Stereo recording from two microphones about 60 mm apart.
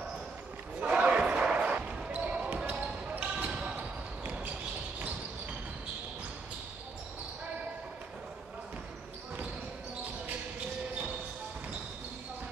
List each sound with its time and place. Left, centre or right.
0.7 s basketball bounce: right
3.2 s basketball bounce: right